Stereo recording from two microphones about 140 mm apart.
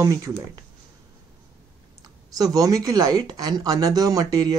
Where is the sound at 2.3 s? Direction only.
25° right (ahead or behind).